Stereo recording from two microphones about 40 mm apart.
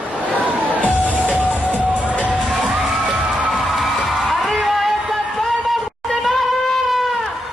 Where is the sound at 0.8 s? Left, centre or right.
Left.